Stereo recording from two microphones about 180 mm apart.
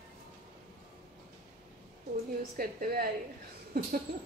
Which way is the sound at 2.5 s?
55° right (ahead or behind).